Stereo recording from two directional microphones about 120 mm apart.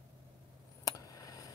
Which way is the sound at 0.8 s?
30° left (ahead or behind).